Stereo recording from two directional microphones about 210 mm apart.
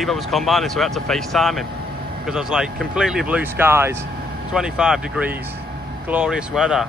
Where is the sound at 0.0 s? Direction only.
Centre (ahead or behind).